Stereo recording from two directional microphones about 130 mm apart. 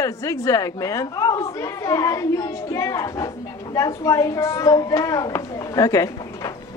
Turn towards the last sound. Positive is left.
turn(degrees=25)  # may be behind; listen again after turning